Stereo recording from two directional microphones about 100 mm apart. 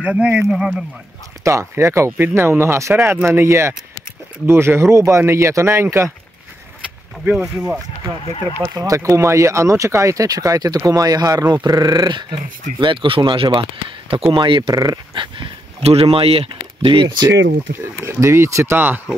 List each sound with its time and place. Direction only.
0.0 s speech: 10° right (ahead or behind)
1.4 s speech: 30° right (ahead or behind)
7.2 s speech: 5° right (ahead or behind)
8.6 s speech: 35° right (ahead or behind); by 14.7 s 55° right (ahead or behind)
14.7 s speech: 35° right (ahead or behind)
15.1 s speech: 60° right (ahead or behind)
18.0 s speech: 25° right (ahead or behind)